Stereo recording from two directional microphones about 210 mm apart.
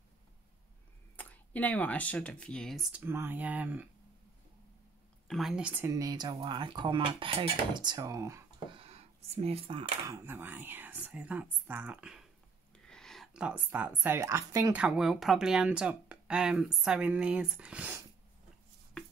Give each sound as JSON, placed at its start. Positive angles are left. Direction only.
{"t": 1.1, "sound": "speech", "side_deg": 5}
{"t": 5.3, "sound": "speech", "side_deg": 0}
{"t": 8.8, "sound": "speech", "side_deg": -30}
{"t": 10.1, "sound": "speech", "side_deg": -10}